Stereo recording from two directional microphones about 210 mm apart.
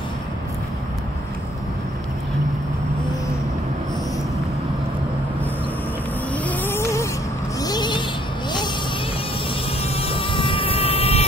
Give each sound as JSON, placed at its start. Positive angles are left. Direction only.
{"t": 6.3, "sound": "vehicle", "side_deg": 5}
{"t": 7.6, "sound": "a sound", "side_deg": 20}
{"t": 9.9, "sound": "vehicle", "side_deg": 25}